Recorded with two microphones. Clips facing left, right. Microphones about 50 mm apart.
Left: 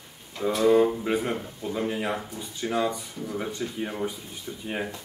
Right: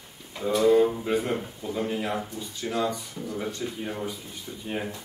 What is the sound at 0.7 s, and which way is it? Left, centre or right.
Speech, centre.